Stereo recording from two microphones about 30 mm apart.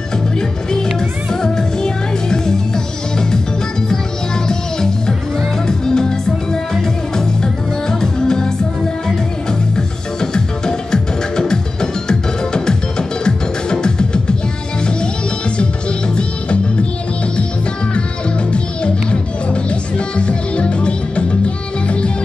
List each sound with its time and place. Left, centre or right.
0.4 s music: left
4.5 s music: left
18.5 s music: left